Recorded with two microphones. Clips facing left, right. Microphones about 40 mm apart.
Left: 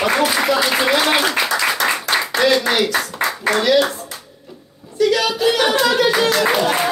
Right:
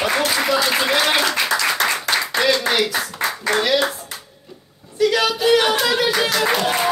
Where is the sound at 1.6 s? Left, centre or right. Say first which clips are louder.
Left 1 dB; centre.